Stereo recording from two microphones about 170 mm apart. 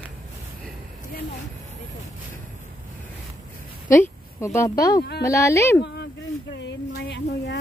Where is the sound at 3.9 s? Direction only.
15° left (ahead or behind).